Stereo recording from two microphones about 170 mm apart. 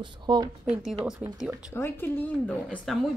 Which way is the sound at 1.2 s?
Centre (ahead or behind).